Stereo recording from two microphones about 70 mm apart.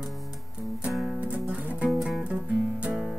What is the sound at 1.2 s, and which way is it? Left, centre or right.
Music, right.